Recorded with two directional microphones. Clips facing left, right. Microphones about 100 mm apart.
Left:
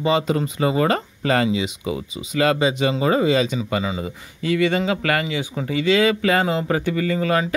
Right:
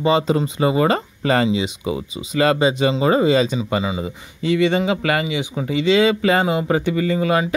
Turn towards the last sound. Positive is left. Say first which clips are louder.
# right 2 dB
turn(degrees=-20)  # may be behind; listen again after turning